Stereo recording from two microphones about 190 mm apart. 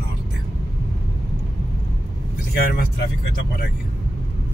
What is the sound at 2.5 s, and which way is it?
Speech, 55° left (ahead or behind).